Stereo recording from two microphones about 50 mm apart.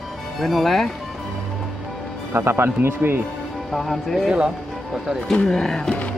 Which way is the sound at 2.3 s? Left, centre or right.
Right.